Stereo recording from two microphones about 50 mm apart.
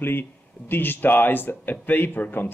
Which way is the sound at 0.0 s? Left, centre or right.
Left.